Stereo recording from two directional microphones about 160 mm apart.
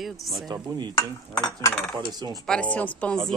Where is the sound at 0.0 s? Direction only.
Centre (ahead or behind).